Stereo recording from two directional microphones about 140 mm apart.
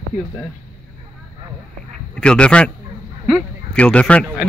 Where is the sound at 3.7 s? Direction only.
10° left (ahead or behind).